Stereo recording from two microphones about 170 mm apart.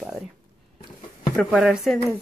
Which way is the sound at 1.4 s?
Centre (ahead or behind).